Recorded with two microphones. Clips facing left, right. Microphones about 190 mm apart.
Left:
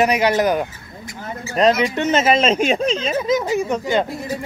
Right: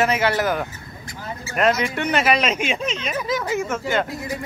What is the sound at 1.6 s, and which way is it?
Speech, 25° left (ahead or behind).